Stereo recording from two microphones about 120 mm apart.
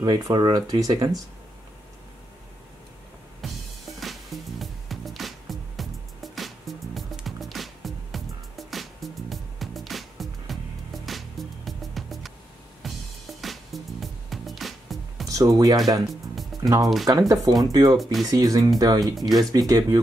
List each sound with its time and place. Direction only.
0.0 s speech: 35° right (ahead or behind)
3.3 s music: centre (ahead or behind)
15.2 s speech: 30° right (ahead or behind)
17.9 s speech: centre (ahead or behind)
18.3 s speech: 30° right (ahead or behind)
19.1 s speech: centre (ahead or behind)
19.5 s speech: 30° right (ahead or behind)